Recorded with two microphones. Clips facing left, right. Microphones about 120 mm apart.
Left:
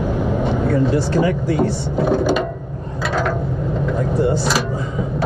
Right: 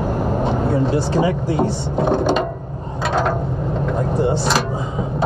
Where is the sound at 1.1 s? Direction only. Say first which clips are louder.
Left 1 dB; 5° right (ahead or behind).